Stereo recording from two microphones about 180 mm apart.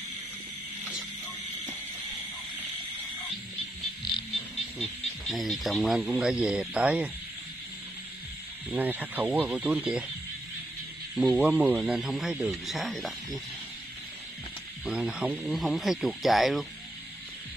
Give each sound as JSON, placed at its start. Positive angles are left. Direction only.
{"t": 4.0, "sound": "music", "side_deg": 25}
{"t": 4.7, "sound": "speech", "side_deg": 0}
{"t": 8.6, "sound": "speech", "side_deg": -10}
{"t": 11.1, "sound": "speech", "side_deg": 0}
{"t": 14.9, "sound": "speech", "side_deg": -5}